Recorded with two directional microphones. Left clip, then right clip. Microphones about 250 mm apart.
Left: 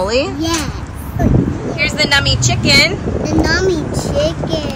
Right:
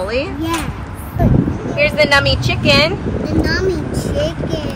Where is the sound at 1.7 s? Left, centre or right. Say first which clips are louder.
Right 2 dB; centre.